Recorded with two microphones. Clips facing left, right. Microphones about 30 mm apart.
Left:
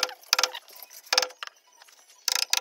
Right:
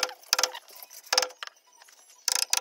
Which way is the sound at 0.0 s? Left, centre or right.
Centre.